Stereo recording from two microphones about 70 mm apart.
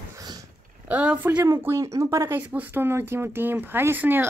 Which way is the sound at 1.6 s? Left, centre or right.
Right.